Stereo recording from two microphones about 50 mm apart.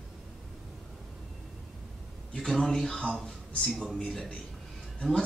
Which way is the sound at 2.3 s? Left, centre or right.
Centre.